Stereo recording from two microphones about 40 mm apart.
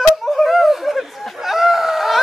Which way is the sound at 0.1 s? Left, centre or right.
Centre.